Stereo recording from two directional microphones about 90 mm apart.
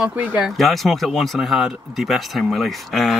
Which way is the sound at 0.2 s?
20° right (ahead or behind).